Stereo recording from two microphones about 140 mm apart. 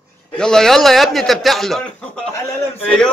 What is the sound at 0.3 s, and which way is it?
A man's voice, 5° left (ahead or behind).